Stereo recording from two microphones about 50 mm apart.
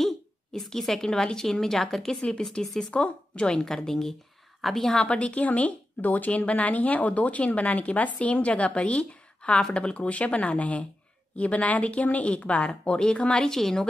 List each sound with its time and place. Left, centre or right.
0.0 s a woman's voice: centre
2.9 s a woman's voice: left; by 5.0 s centre
5.0 s speech: left
13.5 s a woman's voice: centre